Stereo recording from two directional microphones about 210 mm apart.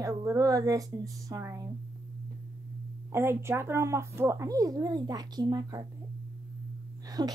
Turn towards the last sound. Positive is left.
turn(degrees=-20)  # may be behind; listen again after turning